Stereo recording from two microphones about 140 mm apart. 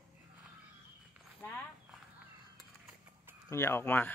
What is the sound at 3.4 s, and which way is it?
Speech, 20° left (ahead or behind).